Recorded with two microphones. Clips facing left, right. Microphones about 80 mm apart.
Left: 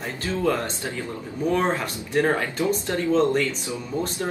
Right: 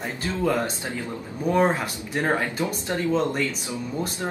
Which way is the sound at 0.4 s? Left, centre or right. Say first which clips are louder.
Even; right.